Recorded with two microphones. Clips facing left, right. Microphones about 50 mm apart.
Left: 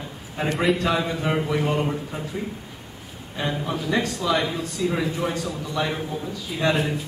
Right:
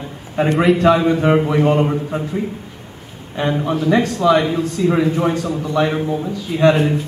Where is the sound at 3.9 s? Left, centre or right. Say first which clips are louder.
Right 8 dB; right.